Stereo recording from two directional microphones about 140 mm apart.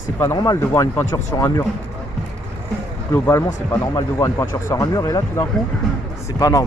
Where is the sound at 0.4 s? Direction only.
25° left (ahead or behind).